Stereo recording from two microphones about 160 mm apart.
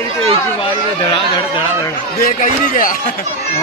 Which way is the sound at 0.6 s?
35° left (ahead or behind).